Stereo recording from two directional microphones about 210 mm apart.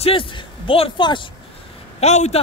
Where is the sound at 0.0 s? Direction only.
25° left (ahead or behind).